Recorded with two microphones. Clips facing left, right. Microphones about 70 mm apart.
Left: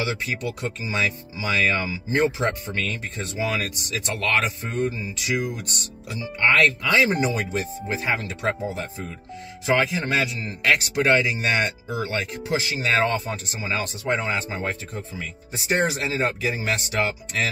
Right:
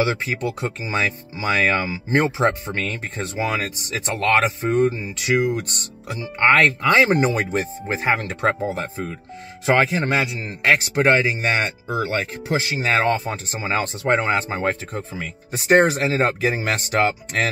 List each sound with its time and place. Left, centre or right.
0.2 s speech: right
4.4 s speech: right
10.0 s speech: right